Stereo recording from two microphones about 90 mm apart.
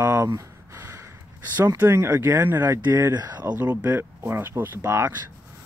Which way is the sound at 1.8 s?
30° right (ahead or behind).